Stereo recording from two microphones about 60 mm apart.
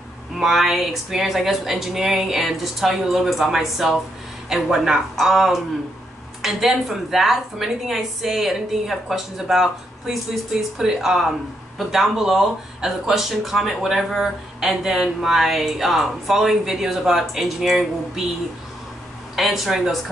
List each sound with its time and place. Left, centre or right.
0.4 s speech: centre
19.3 s speech: centre